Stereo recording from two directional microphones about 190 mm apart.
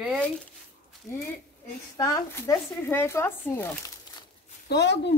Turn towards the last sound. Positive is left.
turn(degrees=60)  # may be behind; listen again after turning